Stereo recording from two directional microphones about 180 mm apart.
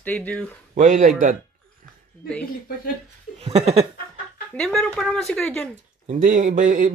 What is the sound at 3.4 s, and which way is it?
Speech, 35° right (ahead or behind).